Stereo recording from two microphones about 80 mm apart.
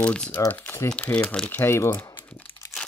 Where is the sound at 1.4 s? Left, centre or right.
Left.